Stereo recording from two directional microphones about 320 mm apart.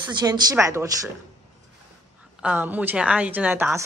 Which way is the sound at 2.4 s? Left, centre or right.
Centre.